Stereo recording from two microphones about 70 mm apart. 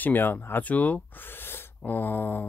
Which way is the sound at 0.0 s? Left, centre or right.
Left.